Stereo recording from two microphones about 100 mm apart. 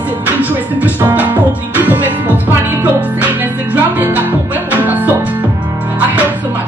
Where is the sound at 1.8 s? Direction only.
20° right (ahead or behind).